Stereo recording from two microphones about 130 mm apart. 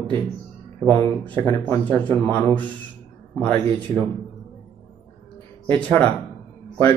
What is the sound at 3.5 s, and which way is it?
Speech, 45° right (ahead or behind).